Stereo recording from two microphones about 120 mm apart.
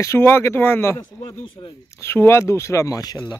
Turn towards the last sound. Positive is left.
turn(degrees=35)  # may be behind; listen again after turning